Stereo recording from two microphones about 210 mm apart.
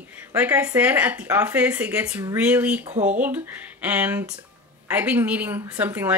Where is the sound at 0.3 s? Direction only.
5° right (ahead or behind).